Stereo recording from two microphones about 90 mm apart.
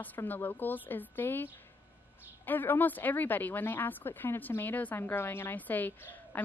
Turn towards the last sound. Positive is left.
turn(degrees=20)  # may be behind; listen again after turning